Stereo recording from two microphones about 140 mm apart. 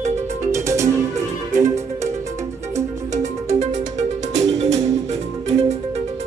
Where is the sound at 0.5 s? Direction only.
20° right (ahead or behind).